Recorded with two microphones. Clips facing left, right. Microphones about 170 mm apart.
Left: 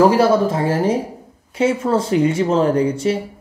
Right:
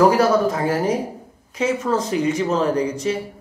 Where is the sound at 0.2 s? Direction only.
30° left (ahead or behind).